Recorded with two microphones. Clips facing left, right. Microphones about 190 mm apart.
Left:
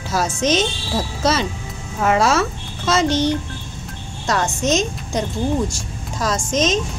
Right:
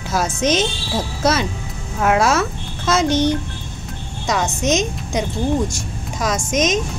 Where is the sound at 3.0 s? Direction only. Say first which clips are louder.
Right 1 dB; 15° right (ahead or behind).